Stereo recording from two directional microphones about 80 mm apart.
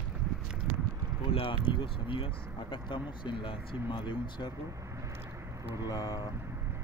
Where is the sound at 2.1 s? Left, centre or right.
Left.